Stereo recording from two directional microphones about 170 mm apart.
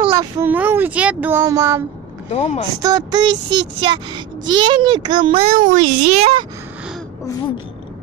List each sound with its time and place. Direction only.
0.4 s speech: 10° right (ahead or behind)
2.2 s speech: 40° left (ahead or behind)
2.8 s speech: 25° right (ahead or behind); by 6.4 s 40° right (ahead or behind)